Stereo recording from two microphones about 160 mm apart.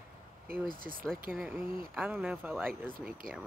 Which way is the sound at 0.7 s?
60° right (ahead or behind).